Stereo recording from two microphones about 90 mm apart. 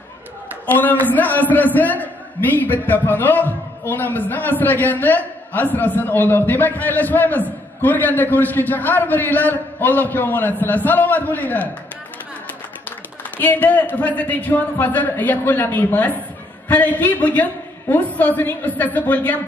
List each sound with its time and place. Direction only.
0.7 s a man's voice: 20° left (ahead or behind)
13.4 s a man's voice: 20° left (ahead or behind)